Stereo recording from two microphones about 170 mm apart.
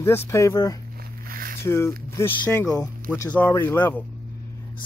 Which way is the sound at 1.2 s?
60° right (ahead or behind).